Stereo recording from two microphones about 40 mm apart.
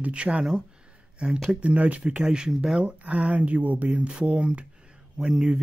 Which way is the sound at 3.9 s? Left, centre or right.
Right.